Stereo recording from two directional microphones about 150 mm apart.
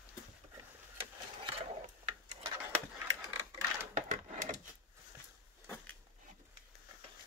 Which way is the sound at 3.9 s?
55° right (ahead or behind).